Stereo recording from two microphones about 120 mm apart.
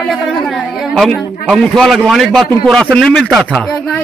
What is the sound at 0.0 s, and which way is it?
A man's voice, centre (ahead or behind).